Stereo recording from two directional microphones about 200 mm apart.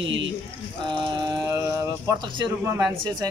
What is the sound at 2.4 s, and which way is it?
Speech, 20° right (ahead or behind).